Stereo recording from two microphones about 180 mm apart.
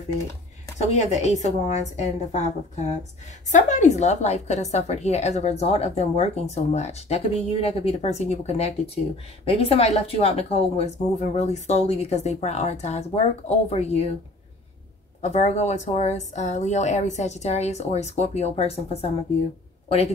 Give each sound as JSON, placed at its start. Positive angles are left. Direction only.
{"t": 0.7, "sound": "a woman's voice", "side_deg": 40}
{"t": 15.2, "sound": "a woman's voice", "side_deg": 40}